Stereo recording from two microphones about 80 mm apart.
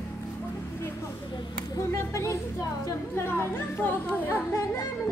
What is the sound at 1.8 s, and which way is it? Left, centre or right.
Speech, left.